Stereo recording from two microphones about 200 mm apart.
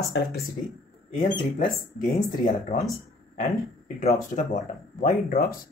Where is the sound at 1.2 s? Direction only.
40° left (ahead or behind).